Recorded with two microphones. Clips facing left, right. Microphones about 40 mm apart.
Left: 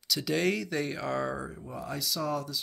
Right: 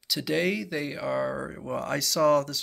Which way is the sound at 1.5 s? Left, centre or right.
Right.